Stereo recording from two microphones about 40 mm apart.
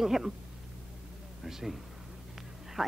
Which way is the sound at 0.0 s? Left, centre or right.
Centre.